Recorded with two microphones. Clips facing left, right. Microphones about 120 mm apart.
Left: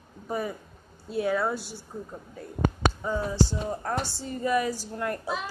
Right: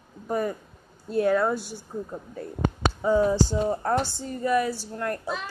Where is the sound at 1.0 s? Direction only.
Centre (ahead or behind).